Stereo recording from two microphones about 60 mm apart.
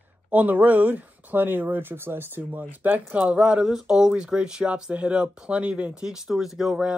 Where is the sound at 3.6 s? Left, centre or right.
Centre.